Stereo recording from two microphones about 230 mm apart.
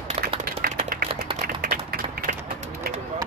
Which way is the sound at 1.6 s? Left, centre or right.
Right.